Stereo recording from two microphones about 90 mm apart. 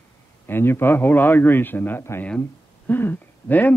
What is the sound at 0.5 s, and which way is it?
A man's voice, 25° left (ahead or behind).